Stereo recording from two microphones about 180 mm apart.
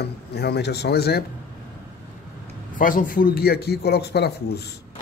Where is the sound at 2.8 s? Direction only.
50° left (ahead or behind).